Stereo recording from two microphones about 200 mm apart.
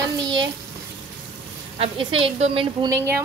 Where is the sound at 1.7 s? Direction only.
30° right (ahead or behind).